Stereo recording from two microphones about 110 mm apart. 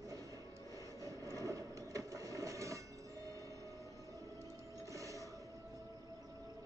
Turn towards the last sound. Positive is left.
turn(degrees=-30)  # may be behind; listen again after turning